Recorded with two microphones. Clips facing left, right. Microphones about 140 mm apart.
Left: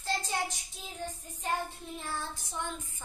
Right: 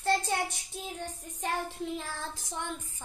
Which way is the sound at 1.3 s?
80° right.